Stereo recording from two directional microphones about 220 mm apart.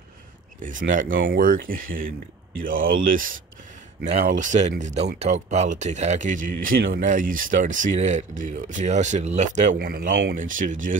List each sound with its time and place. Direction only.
0.6 s speech: 35° right (ahead or behind)